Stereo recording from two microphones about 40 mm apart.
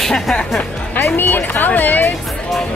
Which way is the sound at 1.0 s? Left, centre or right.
Left.